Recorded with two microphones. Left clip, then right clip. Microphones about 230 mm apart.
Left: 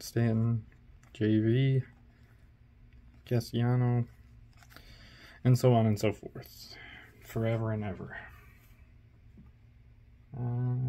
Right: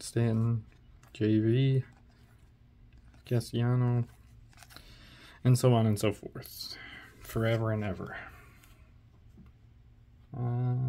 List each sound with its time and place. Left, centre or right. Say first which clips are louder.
0.0 s speech: even; centre
3.3 s speech: even; centre; by 8.2 s right
10.5 s a sound: right 2 dB; right